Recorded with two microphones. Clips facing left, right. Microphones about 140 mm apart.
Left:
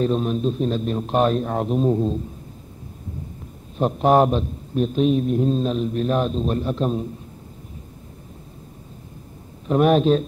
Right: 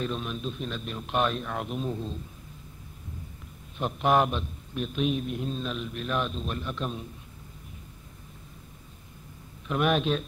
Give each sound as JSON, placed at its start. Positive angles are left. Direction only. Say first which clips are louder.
{"t": 0.0, "sound": "a man's voice", "louder": "left 11 dB", "side_deg": 35}
{"t": 3.7, "sound": "a man's voice", "louder": "left 7 dB", "side_deg": 35}
{"t": 9.7, "sound": "a man's voice", "louder": "left 9 dB", "side_deg": 35}